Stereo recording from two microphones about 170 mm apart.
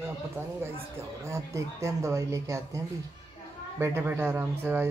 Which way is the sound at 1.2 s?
20° right (ahead or behind).